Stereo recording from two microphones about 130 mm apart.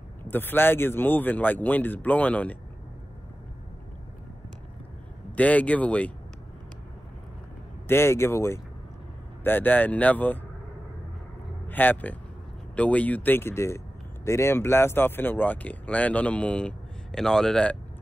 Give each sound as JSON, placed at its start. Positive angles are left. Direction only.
{"t": 0.2, "sound": "speech", "side_deg": 15}
{"t": 5.3, "sound": "speech", "side_deg": 10}
{"t": 7.9, "sound": "speech", "side_deg": 20}
{"t": 11.6, "sound": "speech", "side_deg": 15}